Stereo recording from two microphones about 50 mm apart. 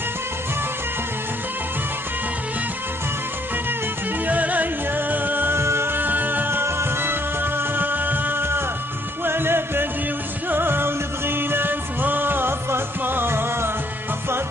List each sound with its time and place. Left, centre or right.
4.3 s music: right
5.6 s music: right
6.6 s music: right